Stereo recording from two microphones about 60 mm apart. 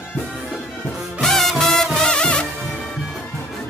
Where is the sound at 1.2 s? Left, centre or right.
Centre.